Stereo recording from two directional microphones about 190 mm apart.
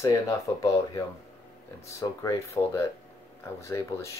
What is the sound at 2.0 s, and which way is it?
Speech, 15° left (ahead or behind).